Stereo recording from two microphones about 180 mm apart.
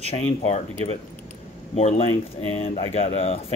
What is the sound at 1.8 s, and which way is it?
Speech, 35° left (ahead or behind).